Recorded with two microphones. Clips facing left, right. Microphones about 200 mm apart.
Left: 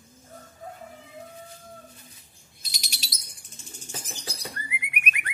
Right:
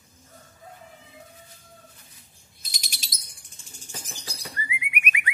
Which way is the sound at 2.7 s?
50° right (ahead or behind).